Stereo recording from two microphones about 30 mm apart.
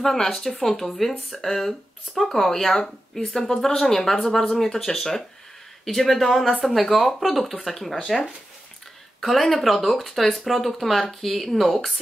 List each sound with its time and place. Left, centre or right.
0.0 s speech: centre
4.7 s speech: centre
9.3 s speech: centre